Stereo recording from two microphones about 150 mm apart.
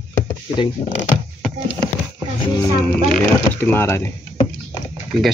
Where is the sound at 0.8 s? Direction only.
35° left (ahead or behind).